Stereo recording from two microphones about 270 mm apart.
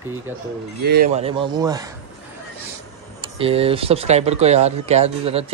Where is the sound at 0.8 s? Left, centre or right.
Right; by 1.9 s centre.